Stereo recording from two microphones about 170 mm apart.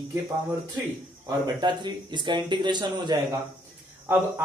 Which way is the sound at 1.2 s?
25° right (ahead or behind).